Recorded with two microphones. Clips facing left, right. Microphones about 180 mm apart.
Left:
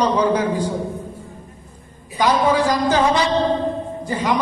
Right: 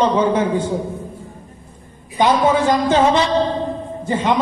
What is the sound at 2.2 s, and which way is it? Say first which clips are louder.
A man's voice: right 2 dB; 25° right (ahead or behind).